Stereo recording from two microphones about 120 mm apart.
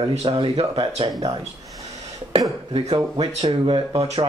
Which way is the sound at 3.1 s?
40° right (ahead or behind).